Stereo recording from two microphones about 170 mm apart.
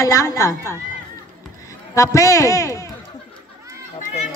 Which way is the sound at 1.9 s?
20° left (ahead or behind).